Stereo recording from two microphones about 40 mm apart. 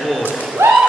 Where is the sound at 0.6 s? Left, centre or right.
Right.